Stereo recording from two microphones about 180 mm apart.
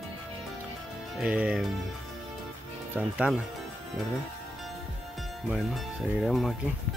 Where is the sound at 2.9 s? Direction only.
5° right (ahead or behind).